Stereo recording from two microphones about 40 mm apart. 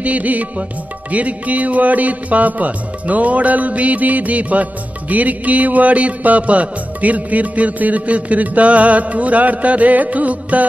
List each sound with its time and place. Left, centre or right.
0.0 s music: right